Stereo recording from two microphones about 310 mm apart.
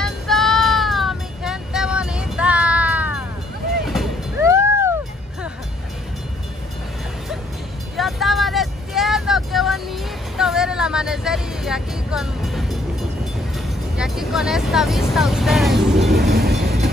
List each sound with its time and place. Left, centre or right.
0.0 s music: centre
3.8 s vehicle: centre
7.9 s vehicle: centre
13.9 s vehicle: centre
16.1 s vehicle: right